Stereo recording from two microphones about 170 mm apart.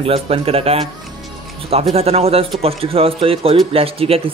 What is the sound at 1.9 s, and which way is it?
Speech, 35° right (ahead or behind).